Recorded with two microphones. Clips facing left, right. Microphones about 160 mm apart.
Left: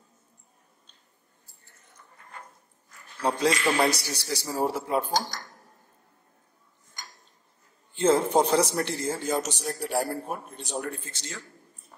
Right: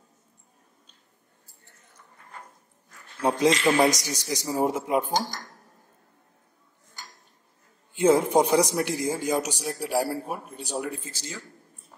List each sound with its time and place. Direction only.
3.2 s a man's voice: 20° right (ahead or behind)
7.9 s a man's voice: 15° right (ahead or behind)